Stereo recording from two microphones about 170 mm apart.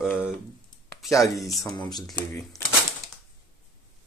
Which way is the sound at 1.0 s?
20° left (ahead or behind).